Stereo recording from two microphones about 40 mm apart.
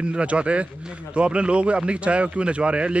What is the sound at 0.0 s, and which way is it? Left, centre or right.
Speech, right.